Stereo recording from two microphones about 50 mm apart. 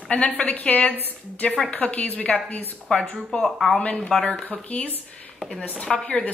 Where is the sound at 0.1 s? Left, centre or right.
Left.